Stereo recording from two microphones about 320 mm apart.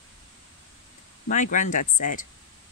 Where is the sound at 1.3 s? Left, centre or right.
Left.